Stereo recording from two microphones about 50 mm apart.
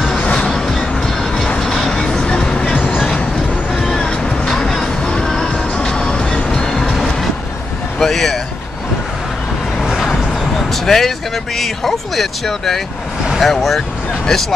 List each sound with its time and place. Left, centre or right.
0.2 s music: left
0.5 s music: centre; by 3.0 s left
3.7 s cat: centre
4.0 s vehicle: centre
4.5 s music: centre
8.0 s speech: centre
10.7 s speech: centre